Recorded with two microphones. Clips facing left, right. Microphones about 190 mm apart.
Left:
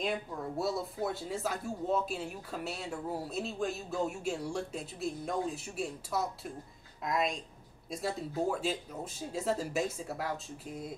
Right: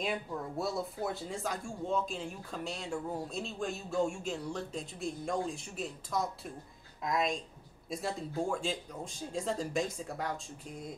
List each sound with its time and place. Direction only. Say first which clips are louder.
0.0 s speech: left 1 dB; centre (ahead or behind)